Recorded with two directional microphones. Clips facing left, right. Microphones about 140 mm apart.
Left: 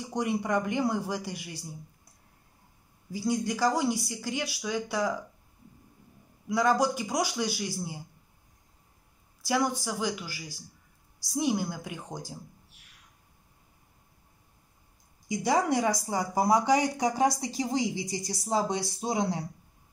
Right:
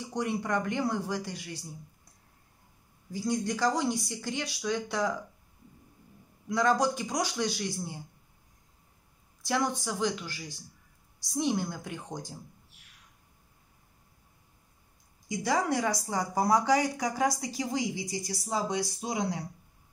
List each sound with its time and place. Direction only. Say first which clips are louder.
0.1 s speech: left 2 dB; 15° left (ahead or behind)
3.1 s speech: left 1 dB; 10° left (ahead or behind)
6.5 s speech: left 1 dB; 5° left (ahead or behind)
9.4 s speech: left 2 dB; 5° left (ahead or behind)
15.2 s a woman's voice: left 3 dB; 15° left (ahead or behind)